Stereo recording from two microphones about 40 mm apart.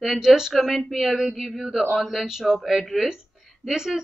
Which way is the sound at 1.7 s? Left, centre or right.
Centre.